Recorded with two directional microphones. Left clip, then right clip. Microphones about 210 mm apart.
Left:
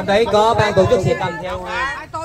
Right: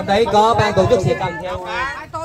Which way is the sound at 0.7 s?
35° right (ahead or behind).